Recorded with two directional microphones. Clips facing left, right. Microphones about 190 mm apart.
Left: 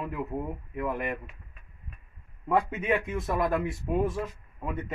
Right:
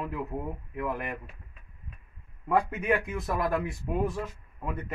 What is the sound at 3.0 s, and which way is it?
Speech, centre (ahead or behind).